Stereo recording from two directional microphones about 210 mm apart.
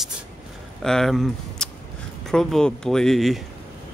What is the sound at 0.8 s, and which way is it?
Speech, centre (ahead or behind).